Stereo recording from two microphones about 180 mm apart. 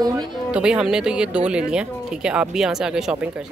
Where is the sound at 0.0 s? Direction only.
20° right (ahead or behind).